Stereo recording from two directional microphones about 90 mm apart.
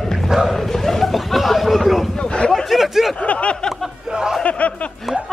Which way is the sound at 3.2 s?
15° left (ahead or behind).